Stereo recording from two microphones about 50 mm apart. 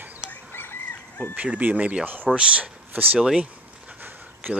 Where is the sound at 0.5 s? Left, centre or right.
Left.